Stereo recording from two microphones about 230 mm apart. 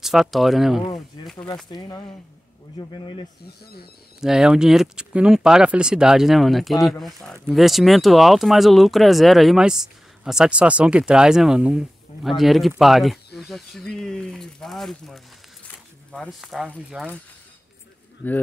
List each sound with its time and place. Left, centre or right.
0.0 s speech: centre
1.7 s speech: centre
4.2 s speech: centre
18.2 s speech: centre